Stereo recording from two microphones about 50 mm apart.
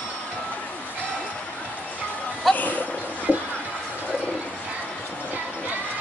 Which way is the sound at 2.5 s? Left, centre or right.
Left.